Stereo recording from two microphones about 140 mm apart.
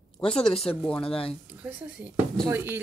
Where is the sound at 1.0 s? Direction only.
45° left (ahead or behind).